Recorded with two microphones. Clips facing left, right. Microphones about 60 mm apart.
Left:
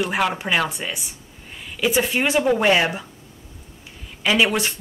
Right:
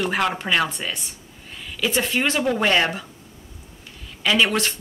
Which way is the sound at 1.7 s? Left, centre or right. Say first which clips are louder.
Left 2 dB; centre.